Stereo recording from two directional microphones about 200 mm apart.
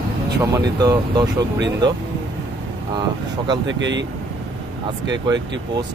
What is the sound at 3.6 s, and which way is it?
Speech, 65° right (ahead or behind).